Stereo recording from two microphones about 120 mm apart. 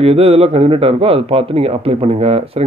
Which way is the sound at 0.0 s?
55° right (ahead or behind).